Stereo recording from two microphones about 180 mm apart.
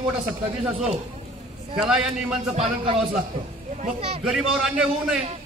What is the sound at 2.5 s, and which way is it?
Speech, 30° right (ahead or behind).